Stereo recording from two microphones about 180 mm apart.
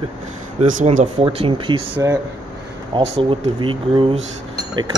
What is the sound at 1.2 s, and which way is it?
Speech, 30° right (ahead or behind).